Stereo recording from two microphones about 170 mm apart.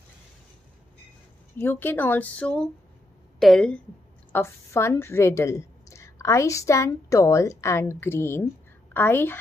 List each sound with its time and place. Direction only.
1.6 s a woman's voice: 10° left (ahead or behind)
4.3 s a woman's voice: 15° left (ahead or behind)